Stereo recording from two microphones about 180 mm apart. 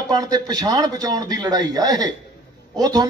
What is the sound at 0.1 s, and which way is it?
A man's voice, 20° right (ahead or behind).